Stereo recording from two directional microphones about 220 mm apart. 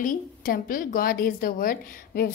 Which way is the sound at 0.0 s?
40° left (ahead or behind).